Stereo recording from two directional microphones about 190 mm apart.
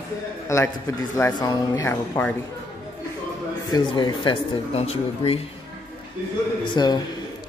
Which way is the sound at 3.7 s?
25° left (ahead or behind).